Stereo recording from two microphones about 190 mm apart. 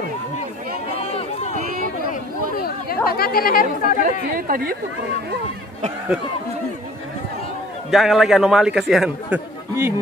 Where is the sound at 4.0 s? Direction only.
50° right (ahead or behind).